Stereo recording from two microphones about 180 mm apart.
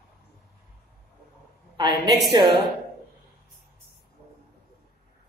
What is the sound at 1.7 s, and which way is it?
Speech, 25° right (ahead or behind).